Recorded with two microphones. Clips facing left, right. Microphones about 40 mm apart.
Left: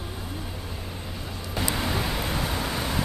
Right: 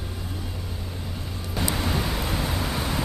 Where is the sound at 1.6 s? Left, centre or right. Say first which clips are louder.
Right 1 dB; centre.